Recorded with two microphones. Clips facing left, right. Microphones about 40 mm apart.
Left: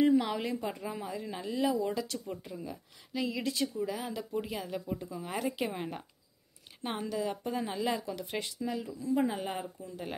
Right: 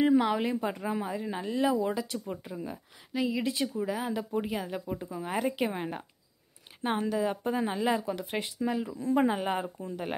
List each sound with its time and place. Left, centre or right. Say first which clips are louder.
0.0 s a woman's voice: right 2 dB; right
3.3 s a woman's voice: right 2 dB; centre; by 9.0 s right
9.0 s speech: right 4 dB; right